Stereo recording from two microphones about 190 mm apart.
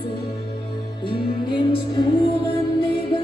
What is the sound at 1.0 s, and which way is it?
Music, 25° left (ahead or behind).